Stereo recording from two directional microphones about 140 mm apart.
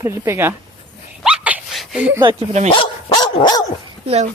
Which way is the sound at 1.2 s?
10° right (ahead or behind).